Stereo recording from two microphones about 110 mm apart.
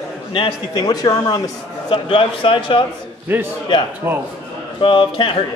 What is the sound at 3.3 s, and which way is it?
Speech, 15° right (ahead or behind).